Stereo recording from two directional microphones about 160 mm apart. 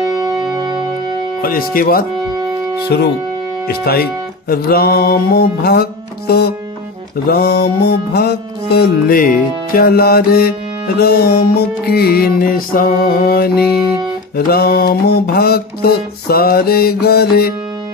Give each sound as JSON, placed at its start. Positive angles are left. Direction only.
{"t": 0.1, "sound": "music", "side_deg": -25}
{"t": 1.4, "sound": "speech", "side_deg": 65}
{"t": 2.9, "sound": "speech", "side_deg": 90}
{"t": 3.6, "sound": "mantra", "side_deg": 75}
{"t": 7.2, "sound": "music", "side_deg": 75}
{"t": 9.8, "sound": "mantra", "side_deg": 70}